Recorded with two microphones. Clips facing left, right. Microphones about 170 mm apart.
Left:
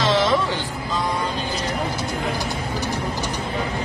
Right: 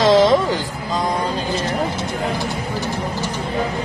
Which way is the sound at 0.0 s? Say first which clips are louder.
Right 6 dB; 40° right (ahead or behind).